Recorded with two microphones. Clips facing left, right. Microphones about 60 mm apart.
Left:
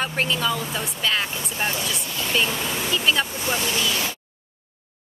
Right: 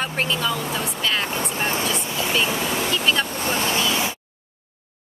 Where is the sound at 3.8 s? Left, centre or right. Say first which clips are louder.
Right 2 dB; right.